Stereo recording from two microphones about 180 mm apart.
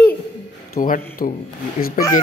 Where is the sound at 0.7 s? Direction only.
50° left (ahead or behind).